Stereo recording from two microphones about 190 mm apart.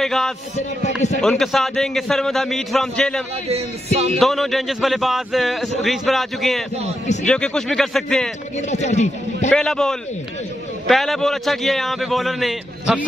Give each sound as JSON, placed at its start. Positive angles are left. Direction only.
{"t": 0.0, "sound": "a man's voice", "side_deg": 0}
{"t": 3.4, "sound": "speech", "side_deg": -35}
{"t": 4.2, "sound": "a man's voice", "side_deg": 0}
{"t": 8.5, "sound": "a man's voice", "side_deg": 40}
{"t": 9.5, "sound": "a man's voice", "side_deg": 5}